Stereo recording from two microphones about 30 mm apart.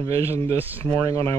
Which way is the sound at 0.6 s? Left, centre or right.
Right.